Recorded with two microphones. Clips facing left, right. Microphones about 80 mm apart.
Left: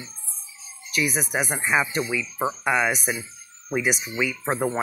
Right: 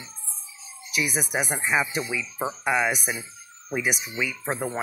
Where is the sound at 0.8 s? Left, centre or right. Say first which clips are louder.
Left 2 dB; centre.